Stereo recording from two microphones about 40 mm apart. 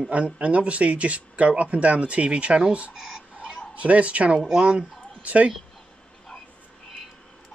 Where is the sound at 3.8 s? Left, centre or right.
Right.